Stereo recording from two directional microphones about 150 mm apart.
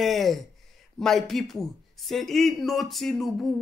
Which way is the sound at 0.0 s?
Centre (ahead or behind).